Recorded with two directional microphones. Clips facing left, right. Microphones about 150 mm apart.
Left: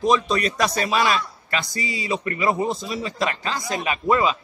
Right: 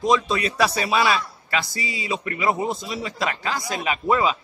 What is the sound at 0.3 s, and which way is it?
Speech, 5° right (ahead or behind).